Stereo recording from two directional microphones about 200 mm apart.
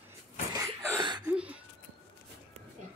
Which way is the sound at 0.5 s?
15° right (ahead or behind).